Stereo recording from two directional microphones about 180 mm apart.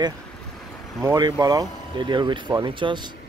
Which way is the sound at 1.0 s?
20° right (ahead or behind).